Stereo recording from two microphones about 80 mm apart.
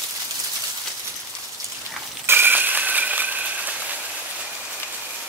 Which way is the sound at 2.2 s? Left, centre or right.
Right.